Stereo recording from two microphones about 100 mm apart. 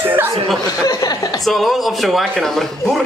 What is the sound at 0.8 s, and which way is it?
Speech, 35° left (ahead or behind).